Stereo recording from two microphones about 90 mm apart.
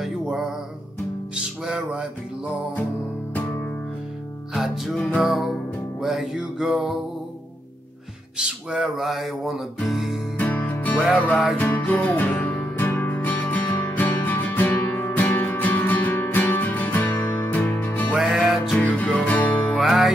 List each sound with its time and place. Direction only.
0.0 s music: 5° right (ahead or behind)
3.3 s music: 20° left (ahead or behind)
4.6 s music: centre (ahead or behind)
5.9 s a sound: 5° right (ahead or behind)
8.4 s a sound: 10° right (ahead or behind)
10.4 s music: 20° left (ahead or behind)
18.1 s music: 15° right (ahead or behind)
18.7 s music: 15° left (ahead or behind)
19.7 s music: 5° right (ahead or behind)